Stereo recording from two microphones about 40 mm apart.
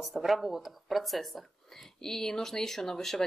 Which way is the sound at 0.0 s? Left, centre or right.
Centre.